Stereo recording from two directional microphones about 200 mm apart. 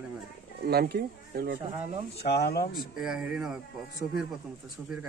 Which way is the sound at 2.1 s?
55° left (ahead or behind).